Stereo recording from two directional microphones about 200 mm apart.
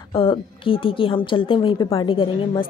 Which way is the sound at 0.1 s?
25° left (ahead or behind).